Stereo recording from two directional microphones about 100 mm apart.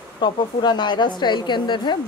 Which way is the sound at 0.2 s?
50° left (ahead or behind).